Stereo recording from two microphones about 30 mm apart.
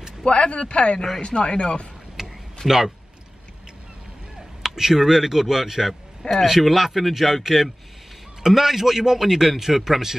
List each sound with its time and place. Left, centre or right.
0.2 s a man's voice: left
2.2 s a sound: centre
2.6 s speech: left
4.7 s a man's voice: centre
8.4 s a man's voice: centre